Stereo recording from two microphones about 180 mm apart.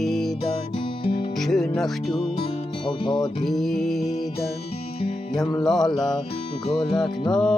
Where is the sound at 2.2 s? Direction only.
25° left (ahead or behind).